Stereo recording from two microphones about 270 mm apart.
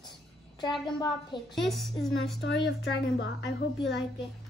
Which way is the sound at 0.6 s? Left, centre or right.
Centre.